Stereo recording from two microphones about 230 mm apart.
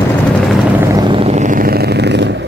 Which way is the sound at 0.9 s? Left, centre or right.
Centre.